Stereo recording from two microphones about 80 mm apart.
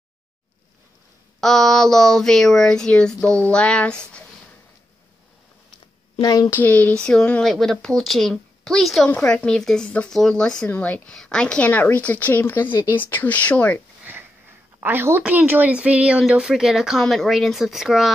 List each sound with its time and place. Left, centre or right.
1.4 s speech: centre
6.2 s speech: left
6.5 s a woman's voice: left
14.1 s sniff: right
14.8 s a woman's voice: right; by 18.1 s centre